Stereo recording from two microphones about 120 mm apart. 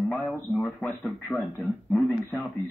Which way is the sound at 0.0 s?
5° left (ahead or behind).